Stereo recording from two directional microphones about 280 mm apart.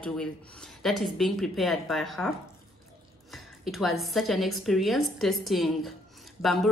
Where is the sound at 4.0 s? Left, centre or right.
Centre.